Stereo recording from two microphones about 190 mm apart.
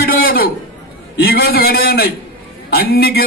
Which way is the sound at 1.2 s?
55° left (ahead or behind).